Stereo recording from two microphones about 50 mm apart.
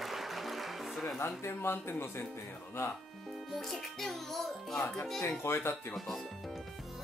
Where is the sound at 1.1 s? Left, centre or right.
Left.